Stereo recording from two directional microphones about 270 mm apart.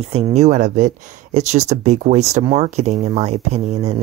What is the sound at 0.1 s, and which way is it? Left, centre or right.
Speech, right.